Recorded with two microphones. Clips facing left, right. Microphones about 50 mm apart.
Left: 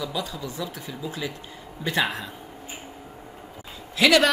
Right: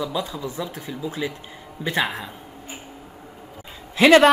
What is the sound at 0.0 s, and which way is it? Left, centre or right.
Speech, right.